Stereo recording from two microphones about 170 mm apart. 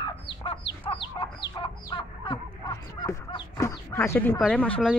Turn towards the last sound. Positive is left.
turn(degrees=5)  # may be behind; listen again after turning